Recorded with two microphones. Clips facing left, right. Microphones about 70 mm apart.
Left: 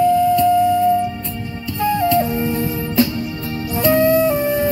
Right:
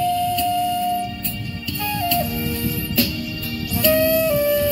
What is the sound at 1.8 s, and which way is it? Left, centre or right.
Music, left.